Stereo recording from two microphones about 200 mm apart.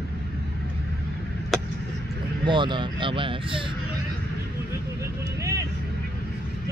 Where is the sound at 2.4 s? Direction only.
25° right (ahead or behind).